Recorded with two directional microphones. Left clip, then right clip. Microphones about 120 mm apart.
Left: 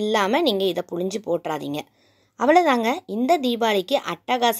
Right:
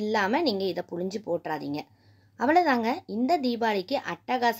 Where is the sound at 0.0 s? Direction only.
40° left (ahead or behind).